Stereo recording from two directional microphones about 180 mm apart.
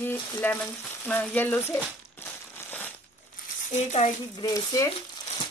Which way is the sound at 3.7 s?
40° left (ahead or behind).